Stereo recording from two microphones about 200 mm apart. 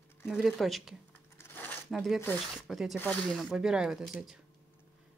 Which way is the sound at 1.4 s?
10° left (ahead or behind).